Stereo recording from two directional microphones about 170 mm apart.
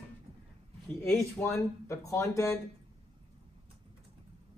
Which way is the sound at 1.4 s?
15° left (ahead or behind).